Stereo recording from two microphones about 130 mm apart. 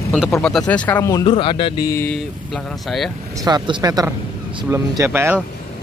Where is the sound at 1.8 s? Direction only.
20° left (ahead or behind).